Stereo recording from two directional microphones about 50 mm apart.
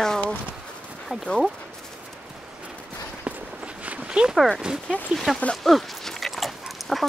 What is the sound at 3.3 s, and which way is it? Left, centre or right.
Walk, right.